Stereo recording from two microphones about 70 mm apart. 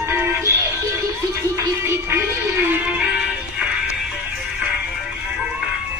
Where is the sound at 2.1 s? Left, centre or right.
Right.